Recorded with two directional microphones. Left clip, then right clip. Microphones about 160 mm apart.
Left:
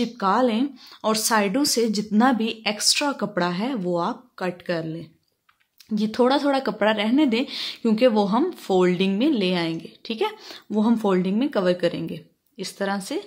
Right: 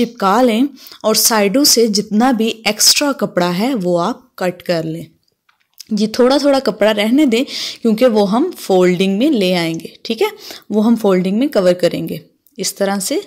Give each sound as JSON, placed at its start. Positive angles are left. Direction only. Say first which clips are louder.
{"t": 0.0, "sound": "speech", "louder": "right 8 dB", "side_deg": -30}